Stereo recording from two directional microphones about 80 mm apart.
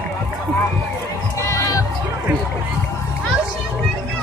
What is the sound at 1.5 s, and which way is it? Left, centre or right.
Music, left.